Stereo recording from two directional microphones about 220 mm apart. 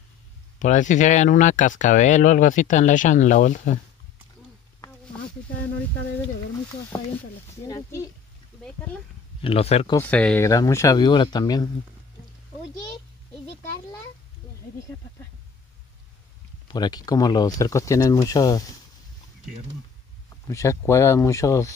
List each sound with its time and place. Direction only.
0.6 s speech: 35° left (ahead or behind)
6.9 s speech: 15° left (ahead or behind)
9.4 s speech: 25° left (ahead or behind)
9.9 s speech: 5° left (ahead or behind)
16.6 s speech: 20° left (ahead or behind)
20.4 s speech: 15° left (ahead or behind)